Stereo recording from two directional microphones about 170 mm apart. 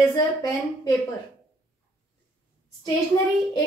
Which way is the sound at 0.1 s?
20° left (ahead or behind).